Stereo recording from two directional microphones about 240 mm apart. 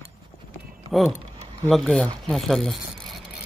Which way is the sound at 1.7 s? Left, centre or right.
Centre.